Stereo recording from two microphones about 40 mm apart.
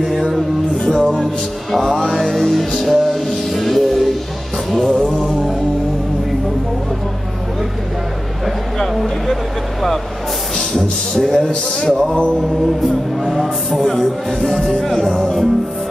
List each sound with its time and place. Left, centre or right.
0.7 s music: centre
8.9 s vehicle: centre
10.7 s speech: centre
12.4 s speech: centre
14.6 s speech: centre